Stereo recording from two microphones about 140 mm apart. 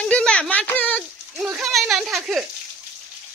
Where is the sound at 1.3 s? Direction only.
10° right (ahead or behind).